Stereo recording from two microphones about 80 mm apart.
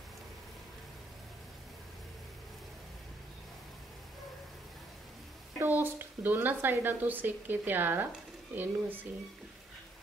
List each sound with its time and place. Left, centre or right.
5.6 s a woman's voice: right